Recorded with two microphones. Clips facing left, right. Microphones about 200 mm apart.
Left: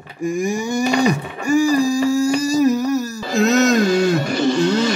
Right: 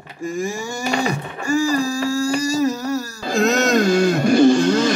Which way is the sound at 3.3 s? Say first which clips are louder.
Left 2 dB; centre (ahead or behind).